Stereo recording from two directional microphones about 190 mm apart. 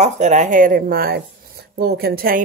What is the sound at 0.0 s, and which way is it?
Speech, 40° right (ahead or behind).